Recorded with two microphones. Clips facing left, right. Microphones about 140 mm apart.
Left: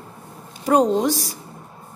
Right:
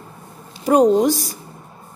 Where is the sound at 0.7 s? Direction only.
10° right (ahead or behind).